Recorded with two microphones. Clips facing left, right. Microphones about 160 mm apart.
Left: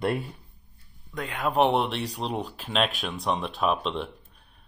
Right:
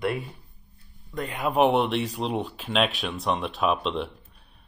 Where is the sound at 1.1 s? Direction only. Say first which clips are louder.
Right 1 dB; 5° right (ahead or behind).